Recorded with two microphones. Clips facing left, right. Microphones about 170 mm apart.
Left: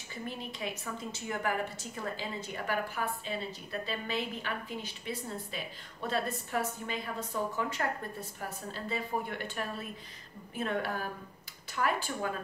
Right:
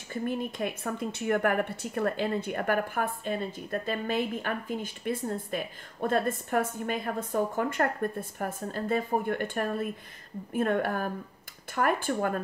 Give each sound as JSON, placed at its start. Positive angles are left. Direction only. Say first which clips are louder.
{"t": 0.1, "sound": "a woman's voice", "louder": "right 9 dB", "side_deg": -50}